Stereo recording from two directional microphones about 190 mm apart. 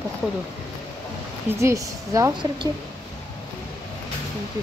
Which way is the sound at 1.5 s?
15° right (ahead or behind).